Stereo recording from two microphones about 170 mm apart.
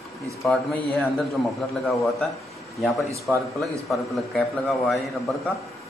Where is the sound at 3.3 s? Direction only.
5° right (ahead or behind).